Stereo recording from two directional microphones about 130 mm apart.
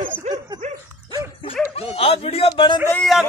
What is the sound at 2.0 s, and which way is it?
Speech, 45° left (ahead or behind).